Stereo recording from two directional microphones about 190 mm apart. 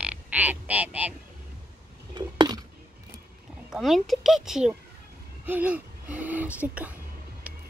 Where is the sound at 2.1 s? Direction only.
20° right (ahead or behind).